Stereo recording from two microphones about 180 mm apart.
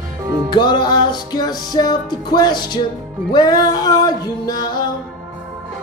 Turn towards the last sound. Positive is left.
turn(degrees=25)  # may be behind; listen again after turning